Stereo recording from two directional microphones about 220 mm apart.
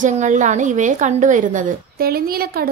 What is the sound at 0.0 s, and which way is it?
A woman's voice, 35° right (ahead or behind).